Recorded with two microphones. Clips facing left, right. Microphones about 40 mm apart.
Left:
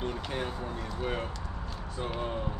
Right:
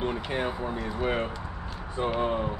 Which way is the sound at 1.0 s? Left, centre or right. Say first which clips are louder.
Right 5 dB; right.